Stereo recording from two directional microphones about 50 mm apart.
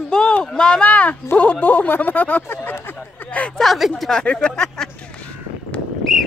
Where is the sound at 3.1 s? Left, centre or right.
Left.